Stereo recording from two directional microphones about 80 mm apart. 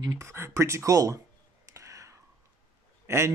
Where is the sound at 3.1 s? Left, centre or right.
Right.